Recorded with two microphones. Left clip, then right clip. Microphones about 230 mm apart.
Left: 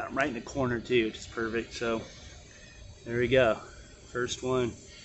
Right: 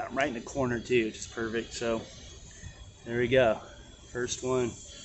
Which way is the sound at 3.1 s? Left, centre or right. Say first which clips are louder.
Even; centre.